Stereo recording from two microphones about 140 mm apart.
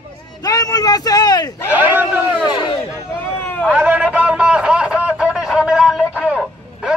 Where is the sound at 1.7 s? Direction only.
15° right (ahead or behind).